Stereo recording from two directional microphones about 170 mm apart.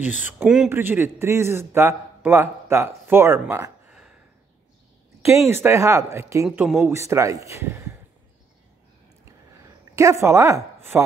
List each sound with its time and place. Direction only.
0.2 s a man's voice: 10° right (ahead or behind)
5.5 s a man's voice: 15° right (ahead or behind)
6.4 s a man's voice: 5° right (ahead or behind)
9.2 s a sound: 20° right (ahead or behind)